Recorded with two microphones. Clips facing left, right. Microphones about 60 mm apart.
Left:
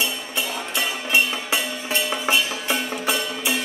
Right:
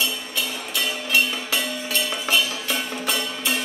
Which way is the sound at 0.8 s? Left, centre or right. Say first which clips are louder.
Left 1 dB; left.